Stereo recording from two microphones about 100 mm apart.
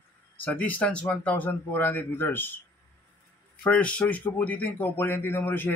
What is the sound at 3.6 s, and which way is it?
A man's voice, 10° left (ahead or behind).